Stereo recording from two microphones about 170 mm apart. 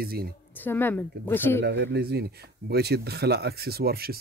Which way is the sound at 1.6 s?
85° right.